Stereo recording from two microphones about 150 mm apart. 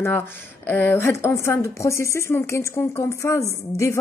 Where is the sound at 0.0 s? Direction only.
15° left (ahead or behind).